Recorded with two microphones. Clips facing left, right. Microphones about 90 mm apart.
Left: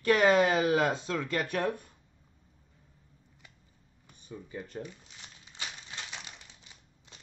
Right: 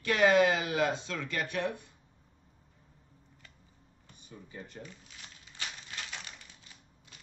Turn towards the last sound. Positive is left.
turn(degrees=20)  # may be behind; listen again after turning